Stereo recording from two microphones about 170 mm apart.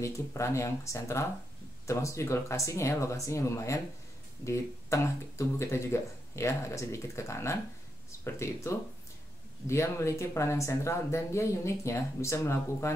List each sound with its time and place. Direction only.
0.0 s speech: 15° left (ahead or behind)